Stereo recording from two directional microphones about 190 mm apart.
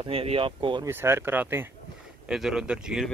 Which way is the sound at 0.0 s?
30° right (ahead or behind).